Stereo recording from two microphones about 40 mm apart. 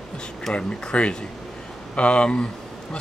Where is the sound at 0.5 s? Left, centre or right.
Left.